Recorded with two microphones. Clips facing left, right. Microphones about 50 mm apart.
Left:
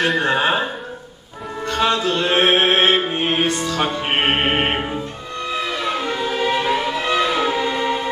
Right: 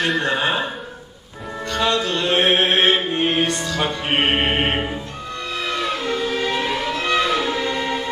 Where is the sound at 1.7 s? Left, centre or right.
Centre.